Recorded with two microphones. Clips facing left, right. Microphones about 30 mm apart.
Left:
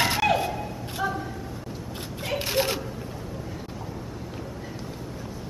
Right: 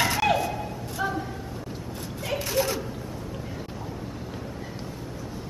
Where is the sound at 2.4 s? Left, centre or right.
Left.